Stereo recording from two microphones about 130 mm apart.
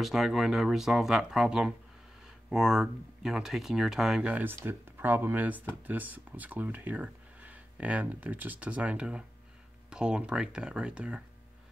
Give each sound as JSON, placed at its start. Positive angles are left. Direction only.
{"t": 0.0, "sound": "speech", "side_deg": 0}